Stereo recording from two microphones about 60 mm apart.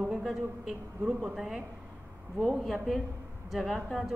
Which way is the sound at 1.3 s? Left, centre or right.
Centre.